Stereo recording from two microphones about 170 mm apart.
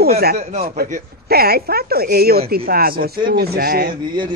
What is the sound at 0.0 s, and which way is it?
Speech, 65° right (ahead or behind).